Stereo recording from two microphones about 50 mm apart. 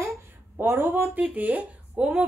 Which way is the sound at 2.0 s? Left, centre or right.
Centre.